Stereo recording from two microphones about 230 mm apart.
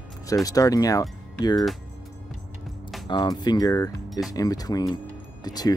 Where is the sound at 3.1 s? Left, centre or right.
Centre.